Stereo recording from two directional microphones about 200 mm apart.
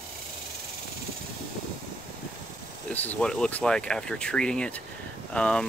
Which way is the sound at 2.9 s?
5° left (ahead or behind).